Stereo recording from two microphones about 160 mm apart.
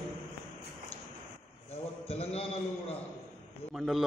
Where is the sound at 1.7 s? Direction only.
40° left (ahead or behind).